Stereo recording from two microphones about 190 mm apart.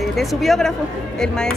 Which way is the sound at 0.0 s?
Centre (ahead or behind).